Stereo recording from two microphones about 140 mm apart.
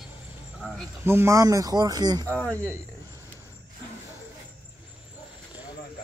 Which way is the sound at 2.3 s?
10° left (ahead or behind).